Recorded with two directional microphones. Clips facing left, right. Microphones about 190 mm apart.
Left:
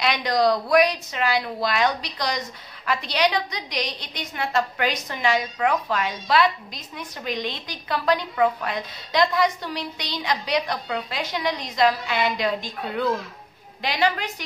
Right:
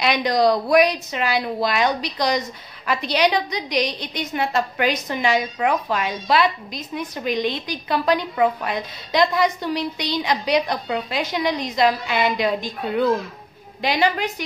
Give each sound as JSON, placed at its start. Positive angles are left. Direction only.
{"t": 0.0, "sound": "a woman's voice", "side_deg": -15}